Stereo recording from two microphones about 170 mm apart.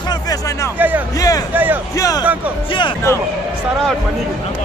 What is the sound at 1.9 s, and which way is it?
Speech, 20° left (ahead or behind).